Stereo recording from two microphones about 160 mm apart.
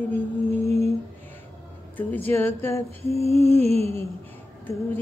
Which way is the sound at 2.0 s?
10° left (ahead or behind).